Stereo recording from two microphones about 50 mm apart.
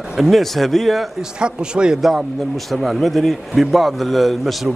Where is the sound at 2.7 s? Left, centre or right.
Centre.